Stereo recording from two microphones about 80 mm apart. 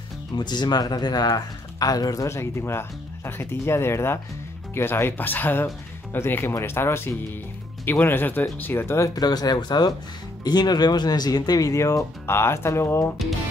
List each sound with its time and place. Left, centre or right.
0.4 s speech: left
2.2 s speech: left
9.2 s speech: left